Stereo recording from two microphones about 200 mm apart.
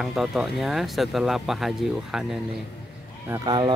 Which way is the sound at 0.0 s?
Centre (ahead or behind).